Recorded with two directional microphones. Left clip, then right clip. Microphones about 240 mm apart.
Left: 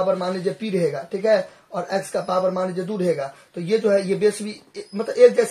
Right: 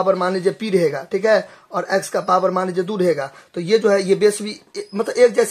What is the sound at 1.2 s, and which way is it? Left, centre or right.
Speech, right.